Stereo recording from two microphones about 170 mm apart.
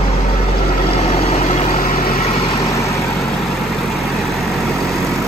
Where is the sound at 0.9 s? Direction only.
35° left (ahead or behind).